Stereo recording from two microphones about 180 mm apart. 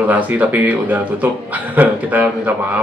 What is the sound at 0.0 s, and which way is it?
Speech, 10° right (ahead or behind).